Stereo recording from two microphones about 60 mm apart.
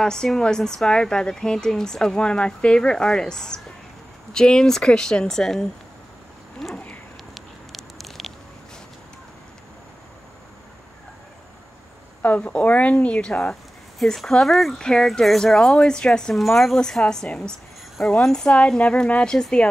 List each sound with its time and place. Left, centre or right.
0.0 s speech: centre
6.7 s a sound: left
7.3 s a sound: centre
12.2 s speech: left
13.9 s speech: centre
17.3 s speech: centre